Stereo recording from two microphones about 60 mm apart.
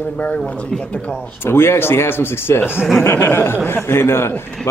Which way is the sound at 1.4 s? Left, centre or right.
Left.